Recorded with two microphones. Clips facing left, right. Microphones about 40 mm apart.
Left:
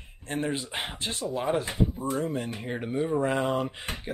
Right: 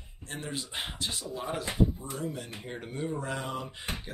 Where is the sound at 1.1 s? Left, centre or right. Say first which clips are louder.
Left 7 dB; left.